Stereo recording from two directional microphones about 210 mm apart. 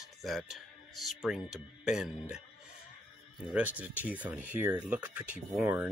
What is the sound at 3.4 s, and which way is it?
Speech, 5° right (ahead or behind).